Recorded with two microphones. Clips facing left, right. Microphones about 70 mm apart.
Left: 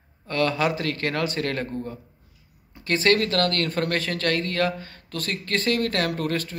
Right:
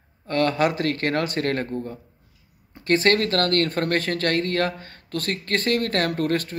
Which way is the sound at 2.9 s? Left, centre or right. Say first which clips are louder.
Right 2 dB; right.